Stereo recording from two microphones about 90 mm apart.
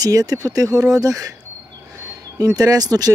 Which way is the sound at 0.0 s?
45° right (ahead or behind).